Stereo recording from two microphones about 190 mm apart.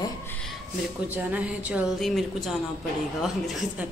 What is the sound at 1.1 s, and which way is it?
A woman's voice, 10° right (ahead or behind).